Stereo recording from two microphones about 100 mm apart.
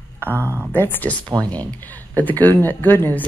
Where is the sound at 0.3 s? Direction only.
25° right (ahead or behind).